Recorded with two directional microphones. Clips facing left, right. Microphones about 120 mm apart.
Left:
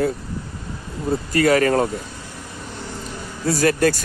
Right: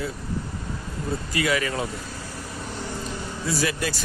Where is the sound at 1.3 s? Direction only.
45° left (ahead or behind).